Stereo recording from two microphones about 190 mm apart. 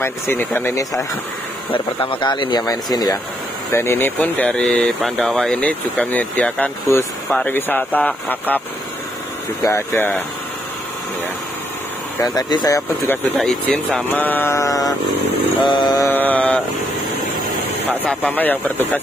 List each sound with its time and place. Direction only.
0.0 s speech: 10° left (ahead or behind)
12.2 s speech: 20° left (ahead or behind)
13.4 s speech: 5° left (ahead or behind); by 16.1 s 20° left (ahead or behind)
16.1 s speech: 10° left (ahead or behind)
18.0 s speech: 10° left (ahead or behind)